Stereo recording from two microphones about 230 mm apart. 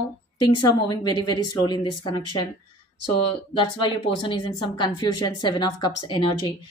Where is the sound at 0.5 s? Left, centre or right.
Centre.